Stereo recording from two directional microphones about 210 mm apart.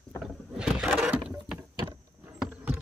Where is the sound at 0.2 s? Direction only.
5° right (ahead or behind).